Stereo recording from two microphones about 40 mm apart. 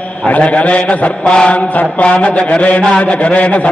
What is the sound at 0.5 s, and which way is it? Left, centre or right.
Mantra, left.